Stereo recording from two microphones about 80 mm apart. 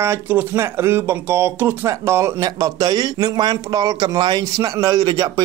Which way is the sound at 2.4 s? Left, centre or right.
Right.